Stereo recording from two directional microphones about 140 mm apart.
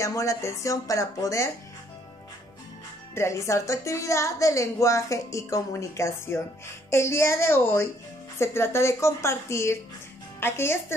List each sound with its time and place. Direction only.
0.0 s a woman's voice: 20° left (ahead or behind)
3.2 s a woman's voice: 20° left (ahead or behind)